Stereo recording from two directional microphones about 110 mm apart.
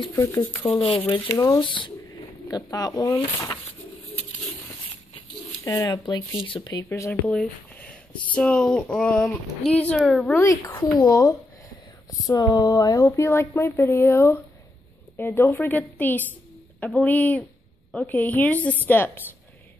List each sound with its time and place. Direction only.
0.1 s speech: 30° left (ahead or behind)
0.7 s speech: 55° left (ahead or behind)
1.3 s speech: 30° left (ahead or behind)
1.6 s speech: 50° left (ahead or behind)
2.4 s speech: 35° left (ahead or behind)
5.6 s speech: 25° left (ahead or behind)
6.0 s speech: 50° left (ahead or behind)
6.6 s speech: 40° left (ahead or behind)
6.9 s speech: 20° left (ahead or behind)
9.9 s a woman's voice: centre (ahead or behind)
10.4 s a woman's voice: 35° left (ahead or behind); by 19.2 s 15° left (ahead or behind)